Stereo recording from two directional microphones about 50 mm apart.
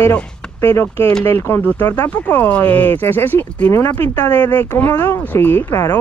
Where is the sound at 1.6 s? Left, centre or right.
Left.